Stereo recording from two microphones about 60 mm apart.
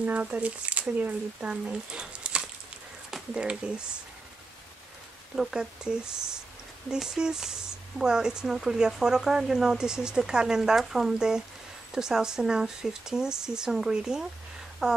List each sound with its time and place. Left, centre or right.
0.0 s speech: right
5.3 s speech: centre